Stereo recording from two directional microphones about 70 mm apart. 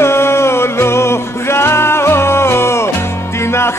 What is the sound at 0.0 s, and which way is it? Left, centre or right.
Music, left.